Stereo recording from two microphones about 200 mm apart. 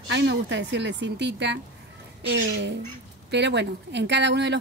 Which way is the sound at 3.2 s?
60° right (ahead or behind).